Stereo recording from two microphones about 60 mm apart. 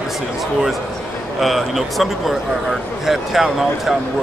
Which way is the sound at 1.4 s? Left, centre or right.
Centre.